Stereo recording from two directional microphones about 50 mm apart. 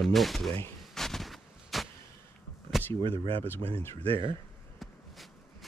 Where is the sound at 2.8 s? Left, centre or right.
Left.